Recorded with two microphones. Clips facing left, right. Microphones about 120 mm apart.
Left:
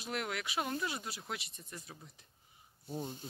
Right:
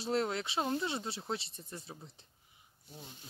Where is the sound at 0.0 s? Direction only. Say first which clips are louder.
Right 6 dB; 30° right (ahead or behind).